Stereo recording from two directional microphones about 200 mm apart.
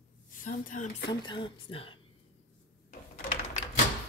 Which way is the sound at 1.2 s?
25° left (ahead or behind).